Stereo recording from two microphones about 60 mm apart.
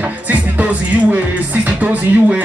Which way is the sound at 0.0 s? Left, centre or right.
Right.